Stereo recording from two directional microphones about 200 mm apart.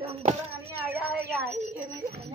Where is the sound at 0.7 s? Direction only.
10° right (ahead or behind).